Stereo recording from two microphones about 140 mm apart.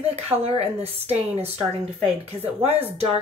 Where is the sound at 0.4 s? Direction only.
45° right (ahead or behind).